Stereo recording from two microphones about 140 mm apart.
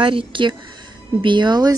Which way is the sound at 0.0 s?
40° right (ahead or behind).